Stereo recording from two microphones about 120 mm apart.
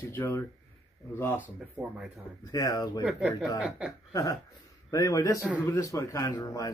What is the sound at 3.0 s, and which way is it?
Speech, 5° right (ahead or behind).